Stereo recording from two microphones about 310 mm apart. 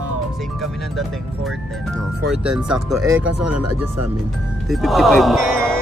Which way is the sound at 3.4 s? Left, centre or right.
Right.